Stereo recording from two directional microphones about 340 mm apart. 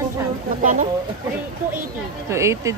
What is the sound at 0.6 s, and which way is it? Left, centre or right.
Speech, right.